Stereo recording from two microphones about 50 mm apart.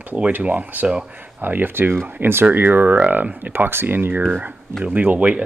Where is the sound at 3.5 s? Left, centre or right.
Right.